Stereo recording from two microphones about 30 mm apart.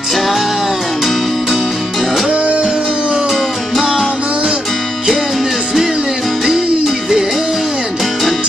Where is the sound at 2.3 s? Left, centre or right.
Right.